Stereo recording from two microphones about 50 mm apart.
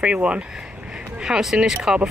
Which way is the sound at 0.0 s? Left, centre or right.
Right.